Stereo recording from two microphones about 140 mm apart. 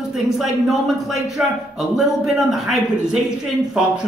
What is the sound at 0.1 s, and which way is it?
A man's voice, centre (ahead or behind).